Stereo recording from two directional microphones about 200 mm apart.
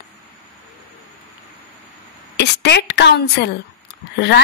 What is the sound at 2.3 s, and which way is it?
A woman's voice, 55° left (ahead or behind).